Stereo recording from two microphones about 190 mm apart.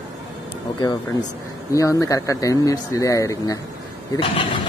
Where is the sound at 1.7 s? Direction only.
15° left (ahead or behind).